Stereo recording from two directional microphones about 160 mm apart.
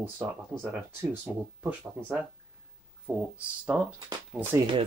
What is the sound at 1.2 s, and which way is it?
Speech, 10° right (ahead or behind).